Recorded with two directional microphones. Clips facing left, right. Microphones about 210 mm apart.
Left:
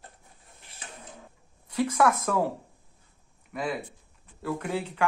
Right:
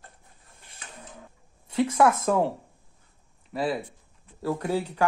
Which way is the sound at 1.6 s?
25° right (ahead or behind).